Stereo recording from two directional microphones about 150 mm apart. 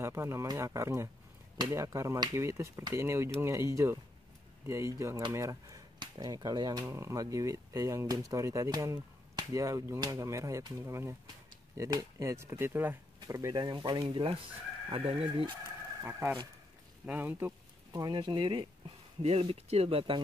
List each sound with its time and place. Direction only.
0.0 s speech: 20° right (ahead or behind); by 15.5 s 35° right (ahead or behind)
16.0 s speech: 15° right (ahead or behind)
17.9 s speech: 25° right (ahead or behind)